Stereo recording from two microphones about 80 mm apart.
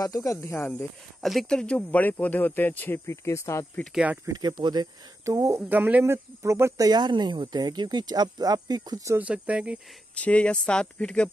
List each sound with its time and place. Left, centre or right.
0.0 s speech: left
1.2 s speech: centre; by 3.6 s left
3.9 s speech: centre
4.3 s speech: right
5.2 s speech: right
5.7 s speech: right
6.0 s speech: right
6.8 s speech: right
9.2 s speech: centre
10.1 s speech: centre